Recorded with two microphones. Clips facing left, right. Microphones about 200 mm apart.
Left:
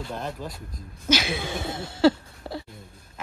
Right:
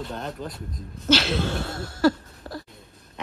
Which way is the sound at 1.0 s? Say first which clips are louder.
Right 3 dB; 10° left (ahead or behind).